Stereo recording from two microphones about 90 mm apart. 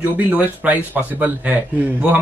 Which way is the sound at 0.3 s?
20° right (ahead or behind).